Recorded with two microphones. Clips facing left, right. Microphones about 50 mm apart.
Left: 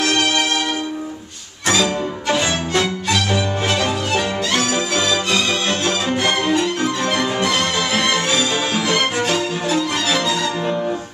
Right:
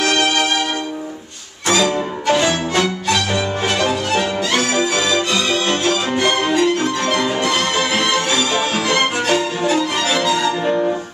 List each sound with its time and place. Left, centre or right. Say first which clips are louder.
0.0 s music: right 2 dB; right
2.7 s music: right 1 dB; centre
6.1 s violin: right 1 dB; centre
7.1 s music: right 1 dB; centre